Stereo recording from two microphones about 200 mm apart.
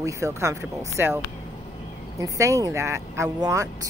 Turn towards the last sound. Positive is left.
turn(degrees=-15)  # may be behind; listen again after turning